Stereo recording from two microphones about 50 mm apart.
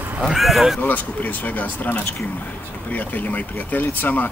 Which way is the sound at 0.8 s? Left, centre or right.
Left.